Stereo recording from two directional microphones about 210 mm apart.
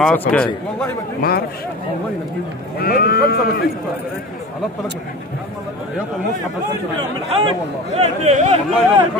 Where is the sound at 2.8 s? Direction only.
45° left (ahead or behind).